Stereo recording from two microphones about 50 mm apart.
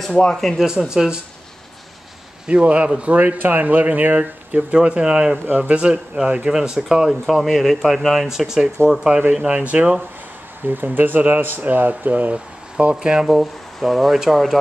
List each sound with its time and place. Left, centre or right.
0.3 s speech: centre
0.6 s speech: centre
2.4 s speech: right
3.3 s speech: right; by 9.1 s centre
9.3 s speech: centre
10.7 s speech: right
12.9 s speech: centre